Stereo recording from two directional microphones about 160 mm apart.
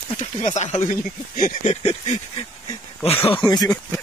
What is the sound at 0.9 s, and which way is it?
Speech, 60° left (ahead or behind).